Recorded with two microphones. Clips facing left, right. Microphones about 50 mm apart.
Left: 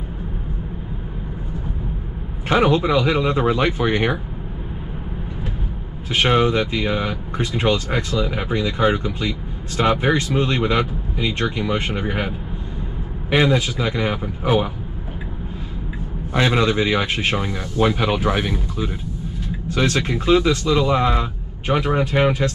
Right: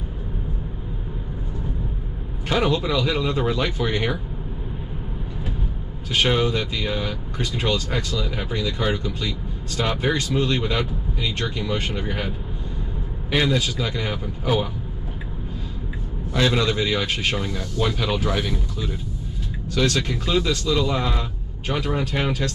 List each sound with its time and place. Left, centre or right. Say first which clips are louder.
2.4 s speech: left 5 dB; left
6.0 s speech: left 4 dB; left
16.3 s speech: left 3 dB; left